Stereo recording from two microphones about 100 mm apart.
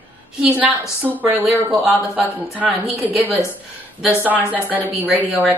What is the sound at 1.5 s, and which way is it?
Speech, 20° right (ahead or behind).